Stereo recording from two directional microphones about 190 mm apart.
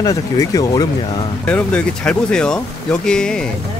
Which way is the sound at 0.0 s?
20° left (ahead or behind).